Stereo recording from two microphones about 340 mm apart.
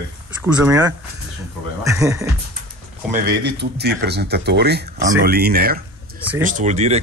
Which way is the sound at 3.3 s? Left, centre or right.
Right.